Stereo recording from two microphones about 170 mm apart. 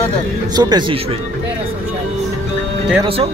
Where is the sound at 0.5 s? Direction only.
25° right (ahead or behind).